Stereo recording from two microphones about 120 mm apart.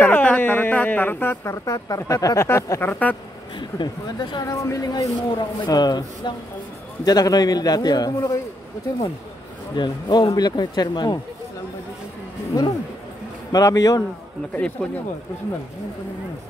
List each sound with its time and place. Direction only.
0.0 s speech: 10° left (ahead or behind)
3.5 s speech: 40° left (ahead or behind)
9.8 s speech: 35° left (ahead or behind)
13.5 s speech: 30° left (ahead or behind)
14.5 s speech: 10° left (ahead or behind)